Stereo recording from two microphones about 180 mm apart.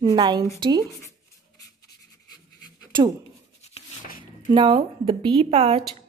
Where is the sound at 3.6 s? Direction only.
35° left (ahead or behind).